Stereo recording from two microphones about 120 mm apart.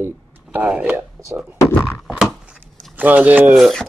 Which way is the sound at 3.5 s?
Centre (ahead or behind).